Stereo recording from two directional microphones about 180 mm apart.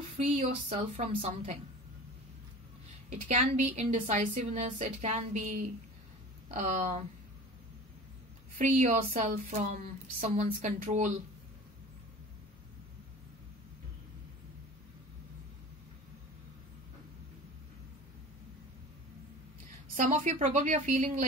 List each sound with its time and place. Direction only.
0.2 s a woman's voice: 35° right (ahead or behind)
3.1 s a woman's voice: 40° right (ahead or behind)
8.5 s a woman's voice: 45° right (ahead or behind)
20.0 s speech: 45° right (ahead or behind)